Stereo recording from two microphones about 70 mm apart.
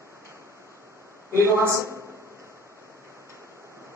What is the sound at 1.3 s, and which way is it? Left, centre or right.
Speech, right.